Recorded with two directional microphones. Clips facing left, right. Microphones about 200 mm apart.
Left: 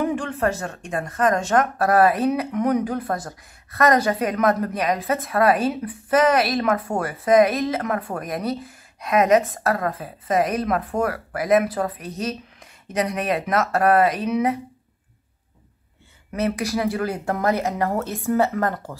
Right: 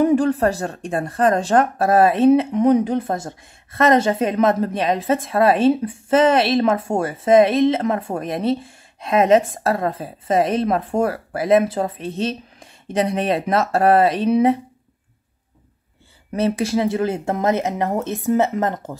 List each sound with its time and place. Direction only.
0.0 s speech: 35° right (ahead or behind)
16.3 s speech: 30° right (ahead or behind)